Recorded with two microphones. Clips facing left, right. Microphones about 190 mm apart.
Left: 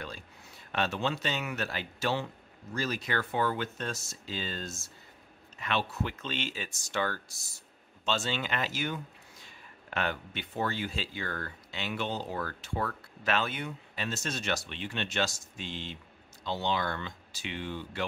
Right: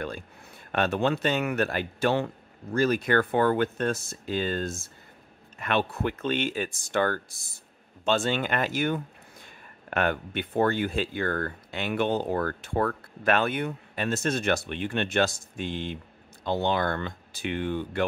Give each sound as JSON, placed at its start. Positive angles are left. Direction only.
{"t": 0.7, "sound": "a man's voice", "side_deg": -55}